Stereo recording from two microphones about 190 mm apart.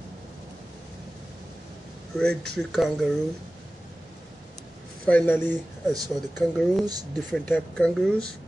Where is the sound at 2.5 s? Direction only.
Centre (ahead or behind).